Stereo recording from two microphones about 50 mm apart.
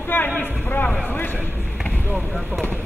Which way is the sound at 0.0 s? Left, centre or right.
Left.